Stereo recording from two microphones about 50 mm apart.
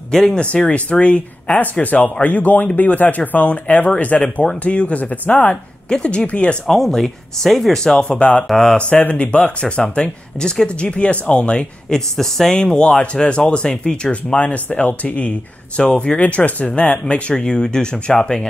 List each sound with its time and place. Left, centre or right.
0.1 s speech: centre
0.4 s speech: left
5.9 s speech: centre
6.7 s speech: centre
8.0 s speech: left
8.5 s speech: centre
8.7 s speech: left
10.9 s speech: left
11.9 s speech: centre
12.5 s speech: centre
17.0 s speech: centre